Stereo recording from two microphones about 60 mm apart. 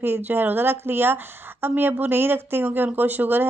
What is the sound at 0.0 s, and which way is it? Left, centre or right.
Speech, right.